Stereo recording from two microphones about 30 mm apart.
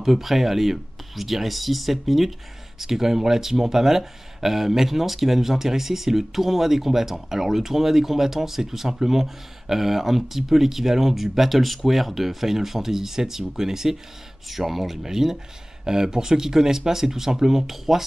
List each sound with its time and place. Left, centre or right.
0.0 s speech: centre
15.0 s speech: centre